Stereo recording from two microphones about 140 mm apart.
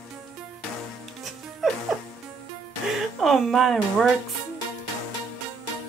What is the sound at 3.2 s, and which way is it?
Speech, centre (ahead or behind).